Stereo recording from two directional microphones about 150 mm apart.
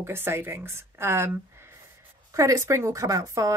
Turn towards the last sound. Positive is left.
turn(degrees=-20)  # may be behind; listen again after turning